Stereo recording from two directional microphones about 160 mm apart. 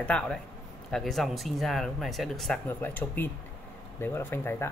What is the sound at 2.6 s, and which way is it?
Speech, 10° left (ahead or behind).